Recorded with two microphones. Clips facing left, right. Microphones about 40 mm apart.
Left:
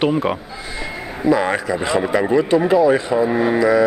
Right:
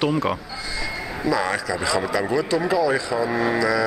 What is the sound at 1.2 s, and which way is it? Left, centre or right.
Speech, left.